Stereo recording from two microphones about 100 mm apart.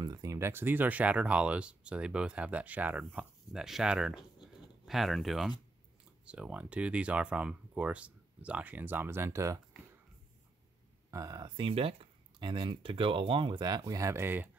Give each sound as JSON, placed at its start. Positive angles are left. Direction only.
{"t": 0.0, "sound": "speech", "side_deg": -40}
{"t": 6.2, "sound": "speech", "side_deg": -10}
{"t": 11.1, "sound": "speech", "side_deg": -35}
{"t": 11.5, "sound": "speech", "side_deg": -65}
{"t": 12.4, "sound": "speech", "side_deg": -50}